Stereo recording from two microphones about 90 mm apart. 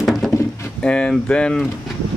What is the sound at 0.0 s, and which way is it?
Drawer open or close, centre (ahead or behind).